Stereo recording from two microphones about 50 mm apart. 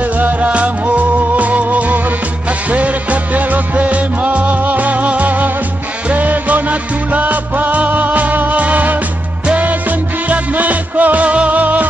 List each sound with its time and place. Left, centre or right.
0.0 s music: right